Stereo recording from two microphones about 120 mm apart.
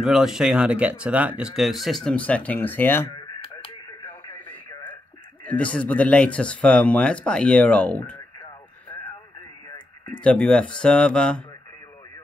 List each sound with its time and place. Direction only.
0.0 s speech: 5° right (ahead or behind); by 3.1 s 15° left (ahead or behind)
3.2 s a sound: 45° left (ahead or behind)
4.0 s radio: 20° left (ahead or behind)
5.4 s speech: 10° left (ahead or behind)
10.2 s speech: 10° left (ahead or behind)